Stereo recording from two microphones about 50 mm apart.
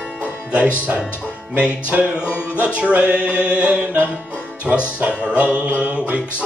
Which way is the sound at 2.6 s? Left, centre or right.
Right.